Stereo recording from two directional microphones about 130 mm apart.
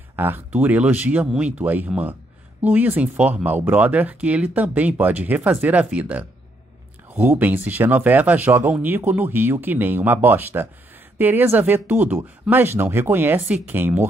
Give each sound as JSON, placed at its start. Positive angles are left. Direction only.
{"t": 0.1, "sound": "speech", "side_deg": -15}